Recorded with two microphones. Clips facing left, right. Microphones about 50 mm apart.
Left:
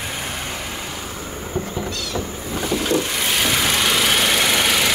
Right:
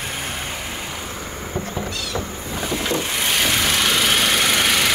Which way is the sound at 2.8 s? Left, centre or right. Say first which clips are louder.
Left 3 dB; centre.